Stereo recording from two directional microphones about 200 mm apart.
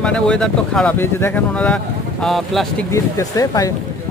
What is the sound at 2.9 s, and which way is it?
Speech, 15° left (ahead or behind).